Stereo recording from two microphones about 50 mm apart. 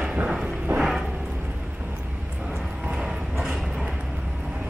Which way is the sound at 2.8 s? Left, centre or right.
Centre.